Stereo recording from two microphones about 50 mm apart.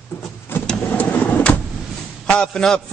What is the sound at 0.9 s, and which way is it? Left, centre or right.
Vehicle, left.